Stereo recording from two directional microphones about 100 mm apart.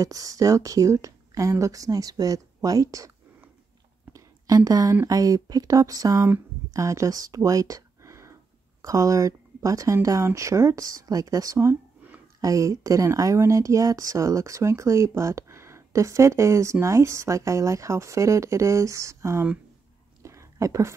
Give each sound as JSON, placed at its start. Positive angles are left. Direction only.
{"t": 0.0, "sound": "speech", "side_deg": -35}
{"t": 4.1, "sound": "a sound", "side_deg": -35}
{"t": 5.0, "sound": "speech", "side_deg": -35}
{"t": 20.2, "sound": "whispering", "side_deg": -30}